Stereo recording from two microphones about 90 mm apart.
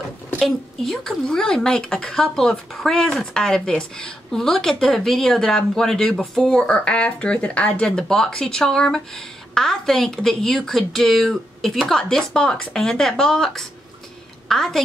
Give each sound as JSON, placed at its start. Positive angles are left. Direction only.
{"t": 0.4, "sound": "a woman's voice", "side_deg": 5}